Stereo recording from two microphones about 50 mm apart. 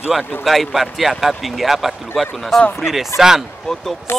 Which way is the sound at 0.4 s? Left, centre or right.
Centre.